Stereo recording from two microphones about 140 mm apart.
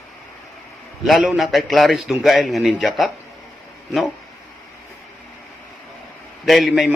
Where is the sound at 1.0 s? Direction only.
Centre (ahead or behind).